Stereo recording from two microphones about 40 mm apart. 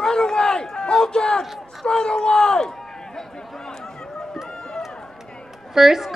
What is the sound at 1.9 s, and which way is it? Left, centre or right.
Speech, left.